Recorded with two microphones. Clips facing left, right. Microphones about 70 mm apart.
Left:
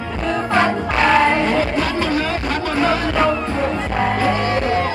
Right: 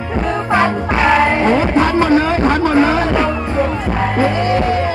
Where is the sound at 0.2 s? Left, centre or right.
Right.